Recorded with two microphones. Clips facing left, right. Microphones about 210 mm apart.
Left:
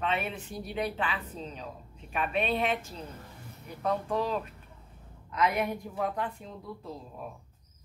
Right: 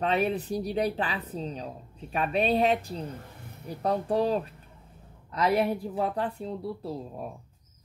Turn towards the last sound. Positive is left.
turn(degrees=-35)  # may be behind; listen again after turning